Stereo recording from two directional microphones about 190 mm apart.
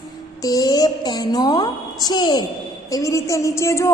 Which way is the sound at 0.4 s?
20° left (ahead or behind).